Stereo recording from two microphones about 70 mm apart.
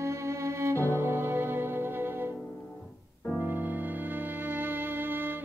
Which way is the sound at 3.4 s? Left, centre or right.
Right.